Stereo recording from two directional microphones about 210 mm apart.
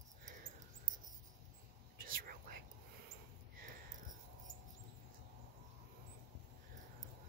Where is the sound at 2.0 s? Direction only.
45° right (ahead or behind).